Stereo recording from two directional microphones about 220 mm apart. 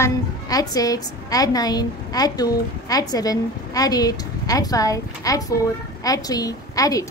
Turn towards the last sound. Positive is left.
turn(degrees=15)  # may be behind; listen again after turning